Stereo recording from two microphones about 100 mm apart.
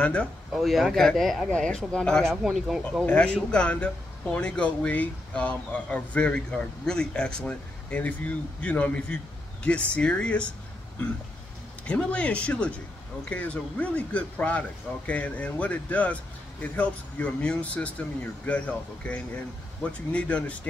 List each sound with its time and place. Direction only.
0.0 s speech: 10° left (ahead or behind)
0.5 s speech: centre (ahead or behind)
3.1 s speech: 10° left (ahead or behind)
11.8 s speech: 10° left (ahead or behind)